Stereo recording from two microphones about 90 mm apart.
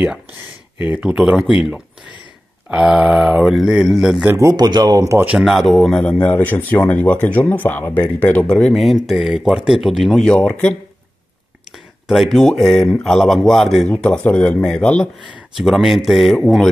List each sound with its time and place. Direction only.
0.7 s speech: 15° right (ahead or behind)
2.7 s speech: 10° right (ahead or behind)
4.3 s speech: 35° right (ahead or behind)
4.6 s speech: 55° right (ahead or behind)
5.4 s speech: centre (ahead or behind)
6.0 s speech: 20° left (ahead or behind)
8.7 s speech: centre (ahead or behind)
10.2 s speech: 10° left (ahead or behind)
11.7 s speech: centre (ahead or behind)
13.8 s speech: 15° left (ahead or behind)
15.5 s speech: 5° right (ahead or behind)